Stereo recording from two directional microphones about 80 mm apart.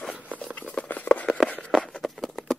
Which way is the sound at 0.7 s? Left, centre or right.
Centre.